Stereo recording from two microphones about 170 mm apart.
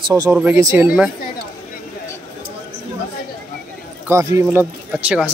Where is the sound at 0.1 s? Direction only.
15° right (ahead or behind).